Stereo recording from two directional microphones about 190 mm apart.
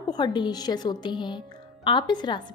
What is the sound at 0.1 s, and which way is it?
A woman's voice, 25° left (ahead or behind).